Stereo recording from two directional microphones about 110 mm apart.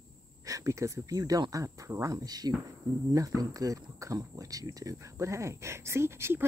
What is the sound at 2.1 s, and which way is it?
Speech, 35° right (ahead or behind).